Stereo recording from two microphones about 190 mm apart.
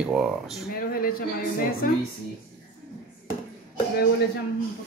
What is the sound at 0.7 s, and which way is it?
Speech, 50° left (ahead or behind).